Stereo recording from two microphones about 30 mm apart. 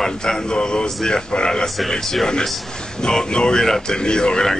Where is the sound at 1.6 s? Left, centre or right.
Centre.